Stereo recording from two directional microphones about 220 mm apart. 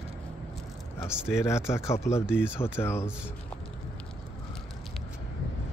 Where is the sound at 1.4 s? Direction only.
10° left (ahead or behind).